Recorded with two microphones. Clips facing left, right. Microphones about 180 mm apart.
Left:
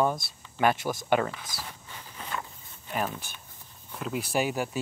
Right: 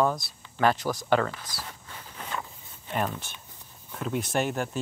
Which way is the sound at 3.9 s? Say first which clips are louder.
Right 2 dB; centre (ahead or behind).